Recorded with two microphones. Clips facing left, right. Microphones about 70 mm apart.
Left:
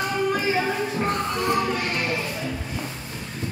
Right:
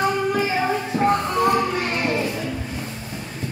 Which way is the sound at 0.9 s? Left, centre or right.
Centre.